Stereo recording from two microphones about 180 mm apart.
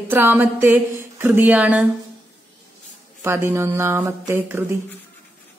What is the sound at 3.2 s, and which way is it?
A woman's voice, 15° right (ahead or behind).